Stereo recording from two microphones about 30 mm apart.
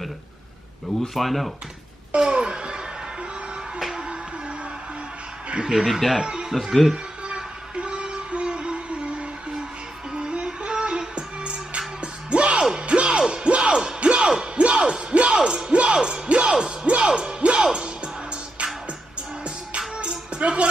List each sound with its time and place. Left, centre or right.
1.1 s speech: centre
2.1 s a sound: right
3.9 s music: right
5.9 s speech: centre
7.7 s music: right
15.3 s music: right
15.7 s music: right
20.3 s music: right